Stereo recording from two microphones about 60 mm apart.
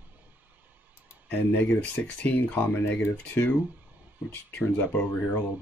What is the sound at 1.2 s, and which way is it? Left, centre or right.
Speech, left.